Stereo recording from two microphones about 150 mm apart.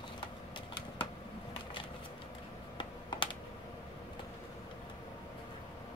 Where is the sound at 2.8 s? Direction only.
30° left (ahead or behind).